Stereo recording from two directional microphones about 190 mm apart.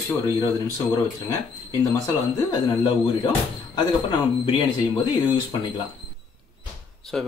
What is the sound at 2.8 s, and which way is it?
Speech, 25° left (ahead or behind).